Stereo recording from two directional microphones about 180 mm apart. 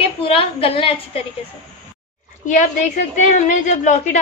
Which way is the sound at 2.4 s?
45° left (ahead or behind).